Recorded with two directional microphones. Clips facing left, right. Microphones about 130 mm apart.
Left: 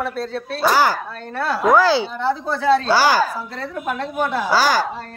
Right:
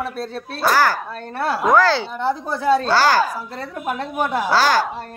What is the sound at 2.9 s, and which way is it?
Speech, 10° left (ahead or behind).